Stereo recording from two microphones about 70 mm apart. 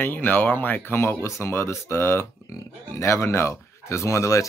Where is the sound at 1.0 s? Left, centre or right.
Left.